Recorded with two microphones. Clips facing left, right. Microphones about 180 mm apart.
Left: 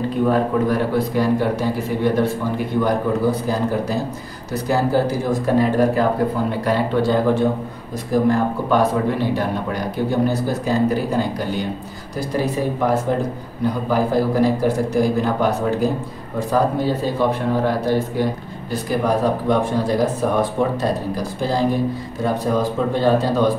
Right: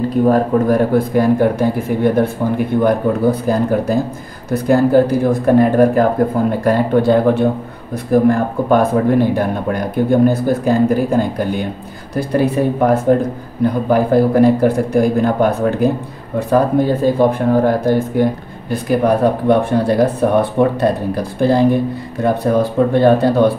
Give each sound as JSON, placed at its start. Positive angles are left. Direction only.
{"t": 0.2, "sound": "speech", "side_deg": -45}